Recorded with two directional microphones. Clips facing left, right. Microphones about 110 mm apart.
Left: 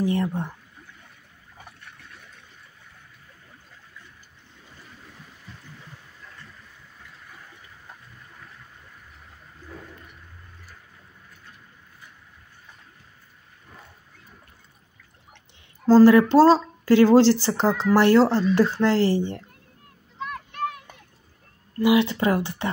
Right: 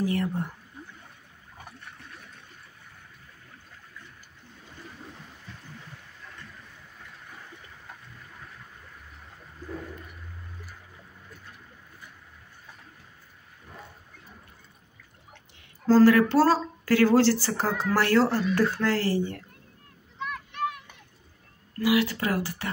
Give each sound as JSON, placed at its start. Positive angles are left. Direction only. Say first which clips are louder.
{"t": 0.0, "sound": "speech", "louder": "left 3 dB", "side_deg": 25}
{"t": 15.9, "sound": "speech", "louder": "left 4 dB", "side_deg": 20}
{"t": 20.2, "sound": "a sound", "louder": "left 1 dB", "side_deg": 35}
{"t": 21.7, "sound": "speech", "louder": "left 5 dB", "side_deg": 20}